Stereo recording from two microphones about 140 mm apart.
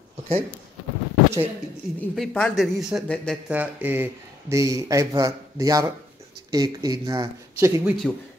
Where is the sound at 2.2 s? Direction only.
5° left (ahead or behind).